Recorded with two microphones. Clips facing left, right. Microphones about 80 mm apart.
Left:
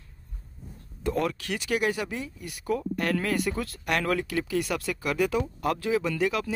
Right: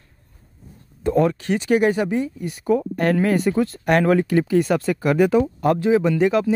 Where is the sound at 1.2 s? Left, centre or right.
Right.